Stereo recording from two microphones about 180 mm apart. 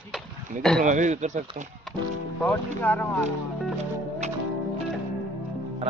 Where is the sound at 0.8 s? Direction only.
45° right (ahead or behind).